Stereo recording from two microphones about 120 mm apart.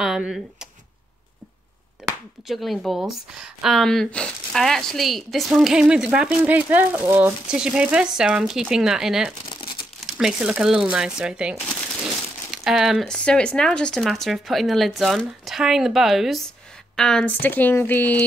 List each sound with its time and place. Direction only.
0.0 s speech: 5° right (ahead or behind)
2.4 s speech: centre (ahead or behind); by 7.3 s 20° right (ahead or behind)
7.4 s speech: 5° right (ahead or behind)
9.5 s crumpling: 45° left (ahead or behind)
9.9 s speech: 5° right (ahead or behind)
12.6 s speech: centre (ahead or behind); by 18.2 s 15° left (ahead or behind)